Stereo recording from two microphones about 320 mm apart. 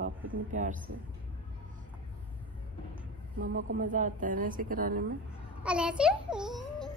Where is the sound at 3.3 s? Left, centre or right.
Right.